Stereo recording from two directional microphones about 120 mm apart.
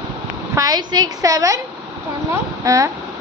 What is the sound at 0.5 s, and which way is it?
A woman's voice, 30° right (ahead or behind).